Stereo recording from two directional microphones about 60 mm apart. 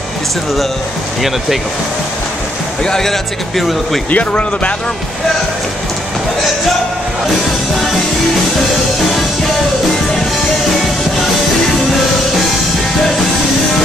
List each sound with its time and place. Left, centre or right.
2.8 s speech: centre
4.1 s speech: left